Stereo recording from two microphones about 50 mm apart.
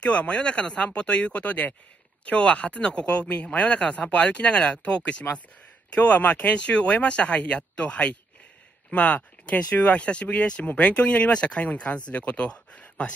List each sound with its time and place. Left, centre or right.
0.0 s speech: left